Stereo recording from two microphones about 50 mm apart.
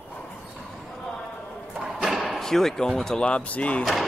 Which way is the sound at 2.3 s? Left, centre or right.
Centre.